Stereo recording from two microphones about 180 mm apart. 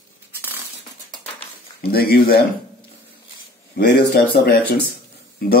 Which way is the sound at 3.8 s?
55° left (ahead or behind).